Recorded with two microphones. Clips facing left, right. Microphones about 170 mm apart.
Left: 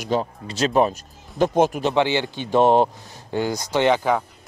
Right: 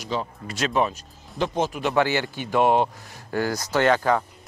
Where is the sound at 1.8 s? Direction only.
20° left (ahead or behind).